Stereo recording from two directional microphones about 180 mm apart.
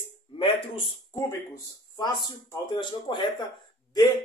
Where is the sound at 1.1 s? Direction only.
20° left (ahead or behind).